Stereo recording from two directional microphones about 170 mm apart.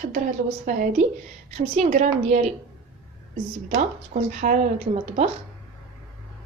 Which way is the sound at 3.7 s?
45° right (ahead or behind).